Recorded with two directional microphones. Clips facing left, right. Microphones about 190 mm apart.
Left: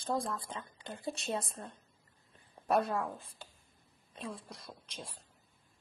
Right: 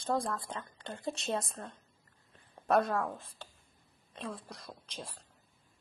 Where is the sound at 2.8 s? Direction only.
Centre (ahead or behind).